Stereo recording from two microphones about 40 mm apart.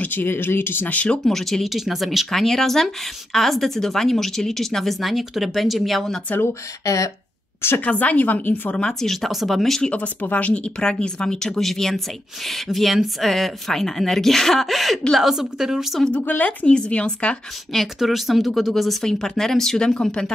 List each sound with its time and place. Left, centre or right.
0.0 s speech: left
0.8 s a woman's voice: left
1.2 s a woman's voice: centre
5.0 s a woman's voice: centre
6.3 s speech: left
7.8 s a woman's voice: left
9.0 s a woman's voice: centre
9.8 s a woman's voice: left
10.8 s speech: centre
11.5 s a woman's voice: centre
15.1 s a woman's voice: centre
16.2 s speech: left
16.6 s speech: left
17.9 s a woman's voice: centre